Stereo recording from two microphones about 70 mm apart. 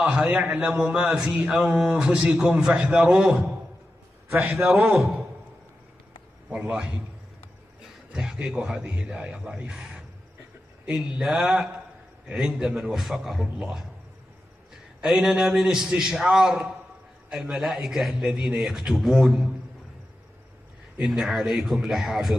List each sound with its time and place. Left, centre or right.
0.0 s a man's voice: centre
6.5 s a man's voice: centre
8.1 s a man's voice: centre
15.0 s a man's voice: centre
21.0 s a man's voice: centre